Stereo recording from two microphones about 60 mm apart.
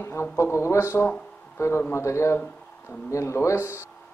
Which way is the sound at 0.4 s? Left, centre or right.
Left.